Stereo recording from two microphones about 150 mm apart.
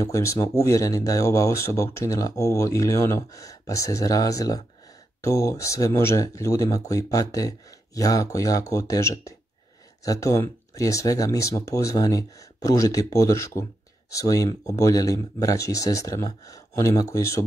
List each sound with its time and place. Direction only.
0.0 s speech: 20° left (ahead or behind)